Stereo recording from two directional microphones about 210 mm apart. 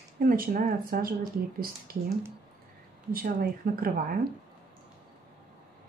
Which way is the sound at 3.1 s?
45° right (ahead or behind).